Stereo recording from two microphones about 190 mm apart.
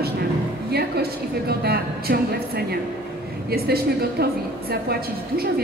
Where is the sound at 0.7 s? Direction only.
55° right (ahead or behind).